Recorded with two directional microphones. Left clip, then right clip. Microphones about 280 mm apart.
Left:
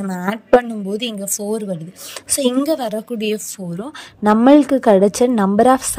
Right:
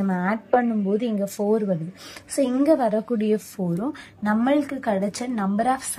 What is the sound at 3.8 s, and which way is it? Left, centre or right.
A woman's voice, centre.